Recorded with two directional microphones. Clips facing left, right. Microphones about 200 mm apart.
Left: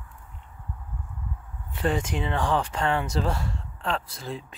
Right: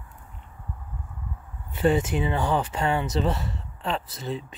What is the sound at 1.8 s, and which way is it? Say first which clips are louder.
Speech: right 4 dB; 5° right (ahead or behind).